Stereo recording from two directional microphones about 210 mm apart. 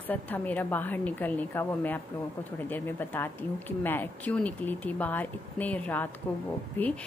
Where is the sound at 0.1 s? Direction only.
10° left (ahead or behind).